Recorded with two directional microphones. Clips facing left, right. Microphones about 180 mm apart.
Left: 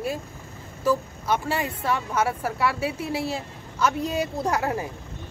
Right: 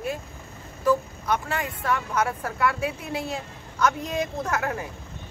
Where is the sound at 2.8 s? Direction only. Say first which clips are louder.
Left 2 dB; 30° left (ahead or behind).